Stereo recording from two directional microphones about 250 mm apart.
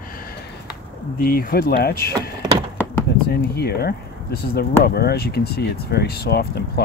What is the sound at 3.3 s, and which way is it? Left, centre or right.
Speech, left.